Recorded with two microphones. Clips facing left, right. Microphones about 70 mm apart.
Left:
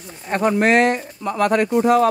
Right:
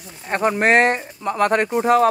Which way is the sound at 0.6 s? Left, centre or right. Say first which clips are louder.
Right 1 dB; right.